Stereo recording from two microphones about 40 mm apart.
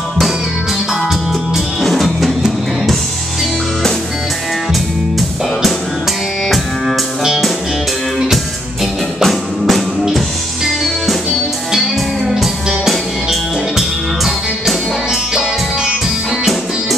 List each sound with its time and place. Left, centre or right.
1.9 s drum: centre
2.2 s music: centre
9.2 s music: centre
12.6 s music: centre
15.3 s music: centre